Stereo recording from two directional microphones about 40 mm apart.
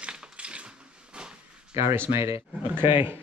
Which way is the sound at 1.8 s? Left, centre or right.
Right.